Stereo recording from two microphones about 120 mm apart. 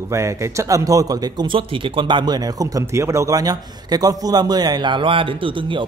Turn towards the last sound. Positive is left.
turn(degrees=-45)  # may be behind; listen again after turning